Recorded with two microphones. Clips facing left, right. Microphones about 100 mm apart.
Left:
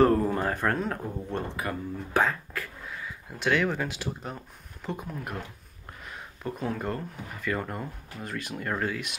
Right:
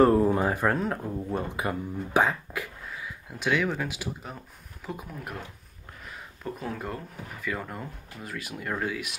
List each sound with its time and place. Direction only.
0.0 s speech: 5° right (ahead or behind)
1.6 s speech: 15° right (ahead or behind)
2.9 s speech: centre (ahead or behind)
6.0 s a sound: centre (ahead or behind)
7.4 s speech: centre (ahead or behind)